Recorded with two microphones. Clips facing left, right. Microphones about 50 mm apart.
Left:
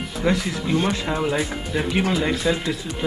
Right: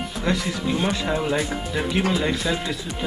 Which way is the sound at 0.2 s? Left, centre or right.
Centre.